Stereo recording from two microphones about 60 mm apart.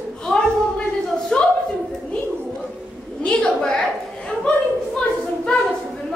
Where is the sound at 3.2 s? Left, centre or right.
Centre.